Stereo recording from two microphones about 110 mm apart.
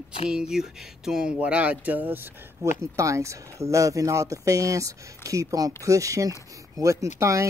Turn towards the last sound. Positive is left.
turn(degrees=-30)  # may be behind; listen again after turning